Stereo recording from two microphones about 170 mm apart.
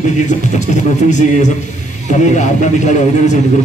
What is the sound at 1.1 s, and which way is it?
Speech, 45° left (ahead or behind).